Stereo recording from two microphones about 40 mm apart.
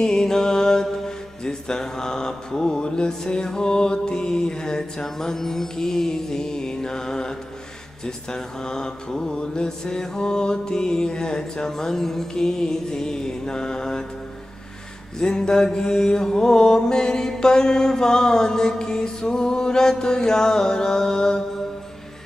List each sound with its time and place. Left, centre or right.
0.0 s mantra: centre
15.1 s mantra: centre